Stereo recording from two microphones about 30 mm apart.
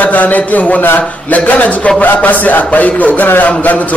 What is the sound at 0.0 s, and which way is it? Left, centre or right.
A man's voice, left.